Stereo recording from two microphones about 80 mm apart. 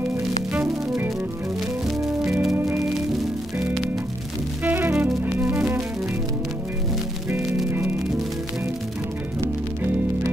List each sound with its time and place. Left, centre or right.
2.5 s music: right
4.6 s music: right
7.2 s music: right